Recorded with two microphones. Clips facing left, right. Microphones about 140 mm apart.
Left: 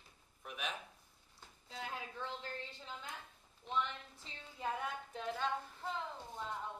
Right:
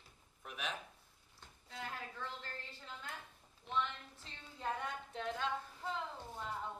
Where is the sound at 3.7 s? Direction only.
10° left (ahead or behind).